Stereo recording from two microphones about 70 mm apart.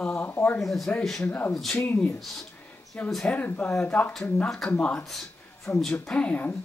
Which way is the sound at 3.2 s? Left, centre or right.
Centre.